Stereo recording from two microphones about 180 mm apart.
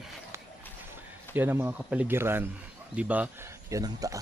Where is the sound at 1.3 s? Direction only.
10° right (ahead or behind).